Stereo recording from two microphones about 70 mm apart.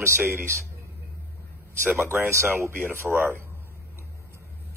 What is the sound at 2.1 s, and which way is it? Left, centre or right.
A man's voice, right.